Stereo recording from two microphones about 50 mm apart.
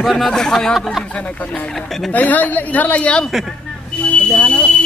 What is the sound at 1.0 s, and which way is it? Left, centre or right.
Speech, left.